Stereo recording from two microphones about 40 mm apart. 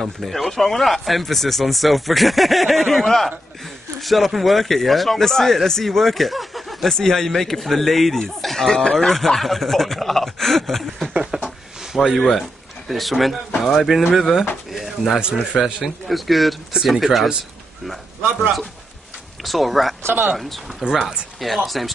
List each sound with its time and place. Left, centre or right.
0.0 s speech: centre
11.1 s a sound: right
11.9 s speech: centre
12.2 s speech: centre
13.8 s speech: centre
14.7 s drawer open or close: centre
15.5 s speech: centre
19.4 s speech: centre
20.0 s speech: right
20.8 s speech: right
21.4 s speech: centre